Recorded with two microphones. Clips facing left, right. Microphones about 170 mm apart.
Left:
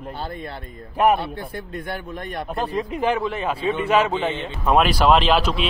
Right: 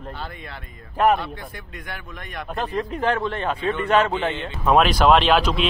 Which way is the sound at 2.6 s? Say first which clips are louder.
Even; 10° left (ahead or behind).